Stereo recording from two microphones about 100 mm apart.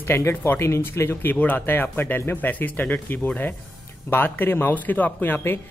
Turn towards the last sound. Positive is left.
turn(degrees=20)  # may be behind; listen again after turning